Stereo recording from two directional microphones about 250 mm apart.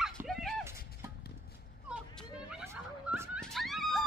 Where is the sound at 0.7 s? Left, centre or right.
Left.